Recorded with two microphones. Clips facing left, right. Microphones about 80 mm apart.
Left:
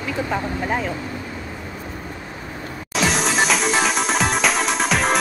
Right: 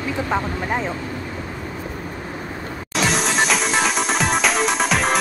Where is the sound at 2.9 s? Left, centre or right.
Centre.